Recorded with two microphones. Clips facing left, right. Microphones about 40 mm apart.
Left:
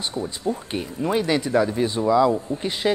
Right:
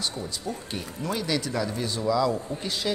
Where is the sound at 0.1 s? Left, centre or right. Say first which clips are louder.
Left 7 dB; left.